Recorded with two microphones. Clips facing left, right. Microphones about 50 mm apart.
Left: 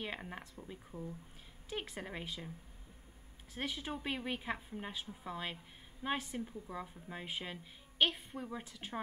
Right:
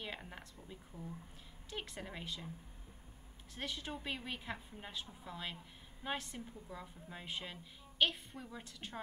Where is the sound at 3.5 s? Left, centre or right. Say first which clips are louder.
Left 3 dB; centre.